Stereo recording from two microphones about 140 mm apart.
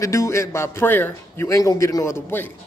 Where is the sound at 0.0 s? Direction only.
20° left (ahead or behind).